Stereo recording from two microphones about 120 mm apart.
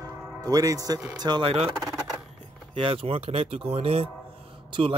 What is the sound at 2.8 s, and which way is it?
Speech, 50° right (ahead or behind).